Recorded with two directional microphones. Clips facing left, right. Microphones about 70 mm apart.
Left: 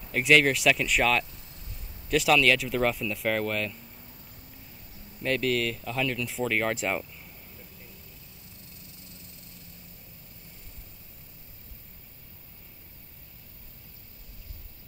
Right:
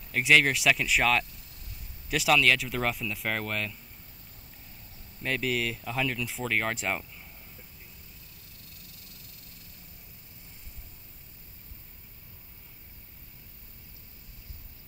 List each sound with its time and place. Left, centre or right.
0.1 s speech: centre
5.2 s speech: centre
8.6 s vehicle: left